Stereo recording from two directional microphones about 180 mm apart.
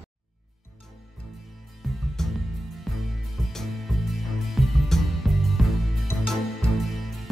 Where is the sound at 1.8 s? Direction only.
Centre (ahead or behind).